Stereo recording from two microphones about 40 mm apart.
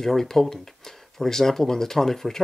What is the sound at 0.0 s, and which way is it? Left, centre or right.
Speech, centre.